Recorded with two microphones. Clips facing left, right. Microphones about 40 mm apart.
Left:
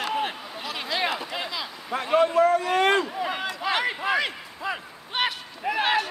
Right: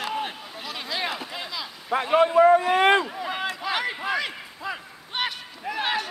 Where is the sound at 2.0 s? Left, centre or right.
Centre.